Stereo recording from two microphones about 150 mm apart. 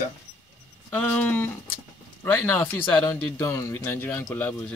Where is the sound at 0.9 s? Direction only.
10° left (ahead or behind).